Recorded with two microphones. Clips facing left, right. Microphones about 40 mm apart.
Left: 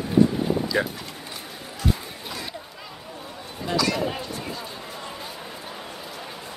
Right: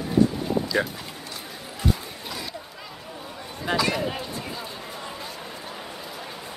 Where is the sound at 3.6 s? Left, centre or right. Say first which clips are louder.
Even; right.